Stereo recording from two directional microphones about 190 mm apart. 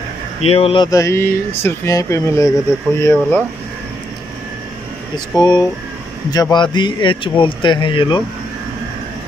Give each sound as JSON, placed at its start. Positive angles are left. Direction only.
{"t": 0.4, "sound": "speech", "side_deg": 30}
{"t": 0.8, "sound": "speech", "side_deg": 15}
{"t": 5.1, "sound": "speech", "side_deg": 20}